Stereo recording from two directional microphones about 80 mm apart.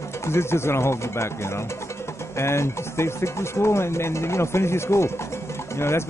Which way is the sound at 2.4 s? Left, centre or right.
Left.